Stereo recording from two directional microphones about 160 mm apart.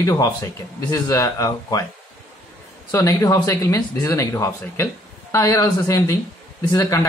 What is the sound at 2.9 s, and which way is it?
Speech, 20° left (ahead or behind).